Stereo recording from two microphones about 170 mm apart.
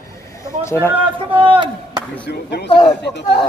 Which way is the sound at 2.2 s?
85° left.